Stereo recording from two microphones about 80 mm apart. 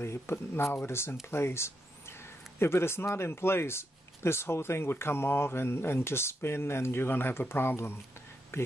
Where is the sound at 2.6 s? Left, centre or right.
Left.